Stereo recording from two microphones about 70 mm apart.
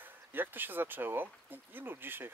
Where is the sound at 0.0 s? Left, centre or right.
Right.